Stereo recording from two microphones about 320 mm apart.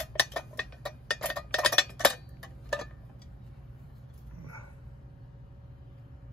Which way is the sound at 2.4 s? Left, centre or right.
Centre.